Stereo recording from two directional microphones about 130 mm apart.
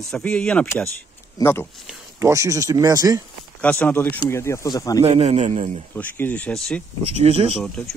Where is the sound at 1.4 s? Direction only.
20° left (ahead or behind).